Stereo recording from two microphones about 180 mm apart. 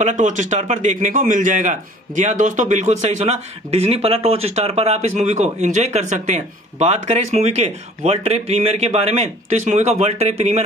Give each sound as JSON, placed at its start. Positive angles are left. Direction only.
{"t": 0.0, "sound": "a man's voice", "side_deg": -45}